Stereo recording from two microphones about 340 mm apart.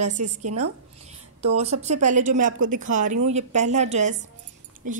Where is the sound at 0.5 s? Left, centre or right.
Right.